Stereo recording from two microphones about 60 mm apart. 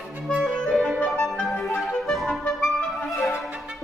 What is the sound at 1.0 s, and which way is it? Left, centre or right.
Music, centre.